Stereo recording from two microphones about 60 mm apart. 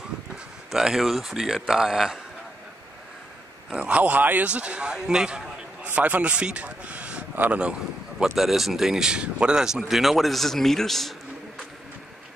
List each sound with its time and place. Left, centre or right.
0.7 s speech: centre
3.7 s speech: right
5.9 s speech: right
8.2 s speech: centre